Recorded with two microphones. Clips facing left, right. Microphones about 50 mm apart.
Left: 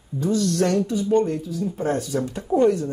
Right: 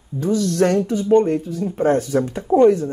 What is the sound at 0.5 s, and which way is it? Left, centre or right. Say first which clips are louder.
Speech: right 4 dB; right.